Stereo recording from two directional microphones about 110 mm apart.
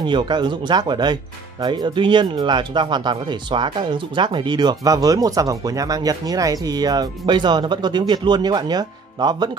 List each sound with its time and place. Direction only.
0.0 s speech: 45° right (ahead or behind)